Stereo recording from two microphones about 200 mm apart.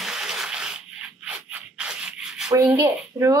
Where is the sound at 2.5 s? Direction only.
15° right (ahead or behind).